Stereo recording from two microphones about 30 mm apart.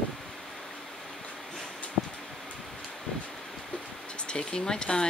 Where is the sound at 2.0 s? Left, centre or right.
Centre.